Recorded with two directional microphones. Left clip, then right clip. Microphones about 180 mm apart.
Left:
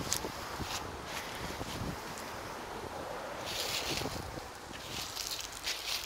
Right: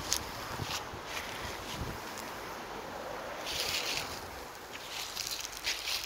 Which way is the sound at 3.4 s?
5° left (ahead or behind).